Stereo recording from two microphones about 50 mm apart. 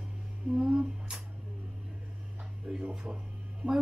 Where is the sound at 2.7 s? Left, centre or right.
Centre.